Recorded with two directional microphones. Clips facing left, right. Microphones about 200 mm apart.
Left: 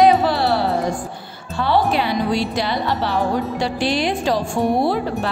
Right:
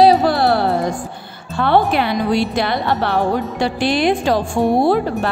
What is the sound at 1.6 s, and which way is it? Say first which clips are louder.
Speech: right 3 dB; 60° right (ahead or behind).